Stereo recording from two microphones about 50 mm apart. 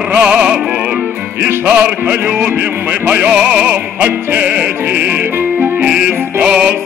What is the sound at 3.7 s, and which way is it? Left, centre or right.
Music, right.